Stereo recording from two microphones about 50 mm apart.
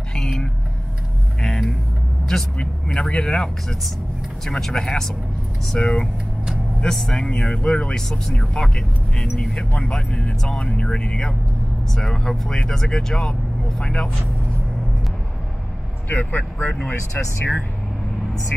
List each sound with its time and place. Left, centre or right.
0.1 s vehicle: centre
2.2 s speech: centre
9.8 s speech: centre
16.2 s speech: left